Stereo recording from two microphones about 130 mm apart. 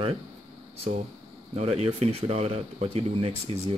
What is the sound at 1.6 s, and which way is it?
Speech, 55° right (ahead or behind).